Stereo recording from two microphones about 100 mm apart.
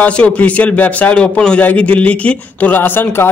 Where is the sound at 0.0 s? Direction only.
15° left (ahead or behind).